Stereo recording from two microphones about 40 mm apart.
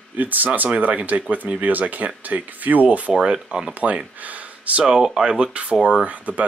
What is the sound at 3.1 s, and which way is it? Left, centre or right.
Speech, right.